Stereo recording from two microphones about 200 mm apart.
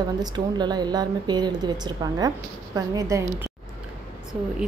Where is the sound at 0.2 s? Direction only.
20° right (ahead or behind).